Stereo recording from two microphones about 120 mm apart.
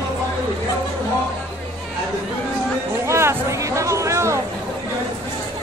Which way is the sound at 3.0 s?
20° right (ahead or behind).